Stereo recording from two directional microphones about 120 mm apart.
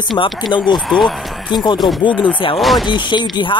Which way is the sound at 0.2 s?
35° left (ahead or behind).